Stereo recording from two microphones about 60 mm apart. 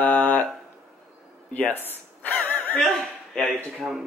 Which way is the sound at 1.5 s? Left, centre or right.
Left.